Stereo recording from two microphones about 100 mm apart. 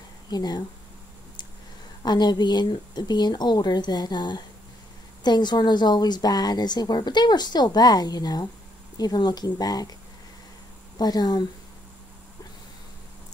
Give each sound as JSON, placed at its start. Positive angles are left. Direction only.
{"t": 0.3, "sound": "speech", "side_deg": 40}
{"t": 2.0, "sound": "a woman's voice", "side_deg": 45}
{"t": 11.0, "sound": "a woman's voice", "side_deg": 40}